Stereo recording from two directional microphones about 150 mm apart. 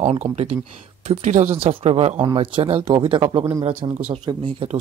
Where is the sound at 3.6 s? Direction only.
55° right (ahead or behind).